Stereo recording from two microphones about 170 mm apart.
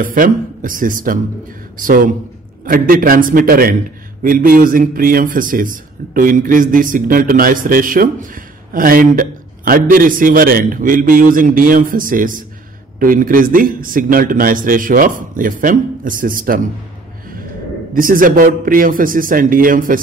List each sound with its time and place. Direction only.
0.0 s a man's voice: 55° right (ahead or behind)
17.9 s speech: 55° right (ahead or behind)